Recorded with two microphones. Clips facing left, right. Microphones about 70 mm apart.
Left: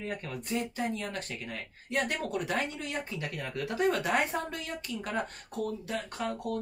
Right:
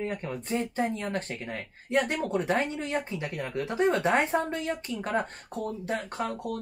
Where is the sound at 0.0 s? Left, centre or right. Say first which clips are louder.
Right 4 dB; right.